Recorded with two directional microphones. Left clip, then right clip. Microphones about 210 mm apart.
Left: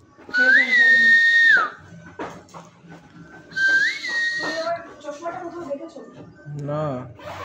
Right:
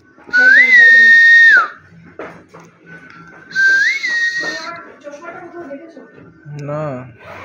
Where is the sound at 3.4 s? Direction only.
15° right (ahead or behind).